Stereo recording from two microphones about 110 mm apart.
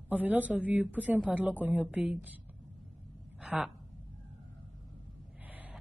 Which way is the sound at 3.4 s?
10° right (ahead or behind).